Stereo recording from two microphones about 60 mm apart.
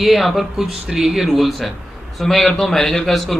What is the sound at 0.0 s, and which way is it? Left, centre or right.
A man's voice, centre.